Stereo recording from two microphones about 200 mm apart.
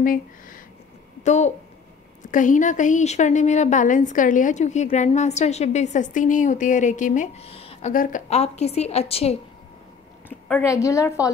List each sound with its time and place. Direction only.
0.0 s a sound: 45° left (ahead or behind)
1.2 s a woman's voice: 35° left (ahead or behind)
7.9 s a woman's voice: 40° left (ahead or behind)
10.5 s a woman's voice: 15° left (ahead or behind)